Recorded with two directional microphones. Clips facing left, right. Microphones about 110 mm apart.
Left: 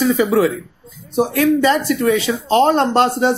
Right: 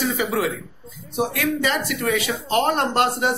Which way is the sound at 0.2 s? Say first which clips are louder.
Left 8 dB; 40° left (ahead or behind).